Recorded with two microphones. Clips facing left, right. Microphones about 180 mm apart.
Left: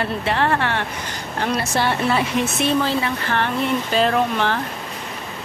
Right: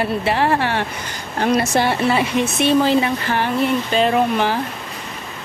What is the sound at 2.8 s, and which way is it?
Speech, 15° right (ahead or behind).